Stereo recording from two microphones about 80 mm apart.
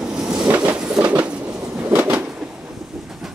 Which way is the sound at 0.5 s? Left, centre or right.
Centre.